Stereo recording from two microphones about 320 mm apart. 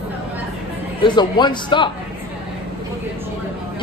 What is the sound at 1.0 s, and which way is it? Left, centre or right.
Speech, centre.